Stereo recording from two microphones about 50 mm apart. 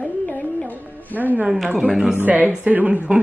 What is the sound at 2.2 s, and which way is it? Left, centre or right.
Speech, right.